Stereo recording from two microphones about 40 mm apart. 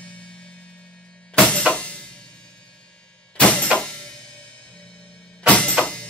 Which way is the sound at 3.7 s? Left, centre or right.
Left.